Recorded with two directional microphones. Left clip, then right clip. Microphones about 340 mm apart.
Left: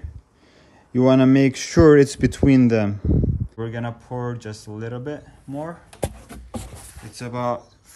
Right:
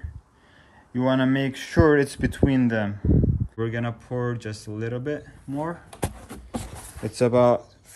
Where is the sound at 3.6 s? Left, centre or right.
Centre.